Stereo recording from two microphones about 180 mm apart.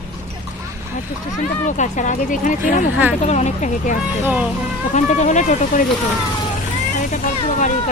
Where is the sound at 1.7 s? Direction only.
45° left (ahead or behind).